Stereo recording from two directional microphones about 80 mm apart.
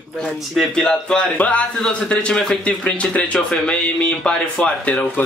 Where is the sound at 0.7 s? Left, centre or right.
Centre.